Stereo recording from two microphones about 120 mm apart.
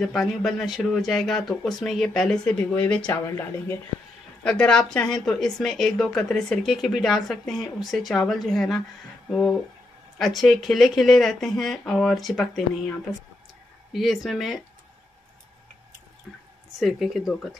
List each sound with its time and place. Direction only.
0.0 s a woman's voice: centre (ahead or behind)
3.1 s speech: 20° left (ahead or behind)
4.4 s a woman's voice: 10° left (ahead or behind)
16.8 s a woman's voice: centre (ahead or behind)